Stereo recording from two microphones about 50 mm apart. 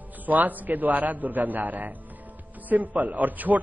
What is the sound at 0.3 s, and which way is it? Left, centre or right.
A man's voice, right.